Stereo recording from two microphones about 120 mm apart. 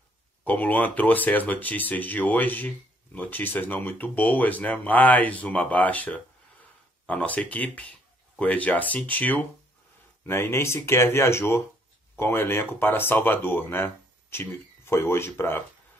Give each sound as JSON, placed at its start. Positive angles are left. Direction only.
{"t": 0.4, "sound": "speech", "side_deg": 15}